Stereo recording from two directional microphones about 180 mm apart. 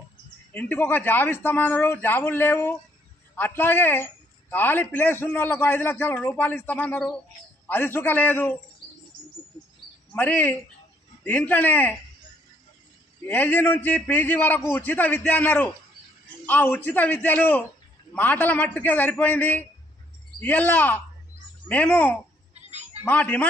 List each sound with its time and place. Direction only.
0.5 s a man's voice: 10° left (ahead or behind)
10.1 s a man's voice: 10° left (ahead or behind)
13.3 s a man's voice: 10° left (ahead or behind)
22.5 s a sound: 40° right (ahead or behind)
23.0 s a man's voice: 10° left (ahead or behind)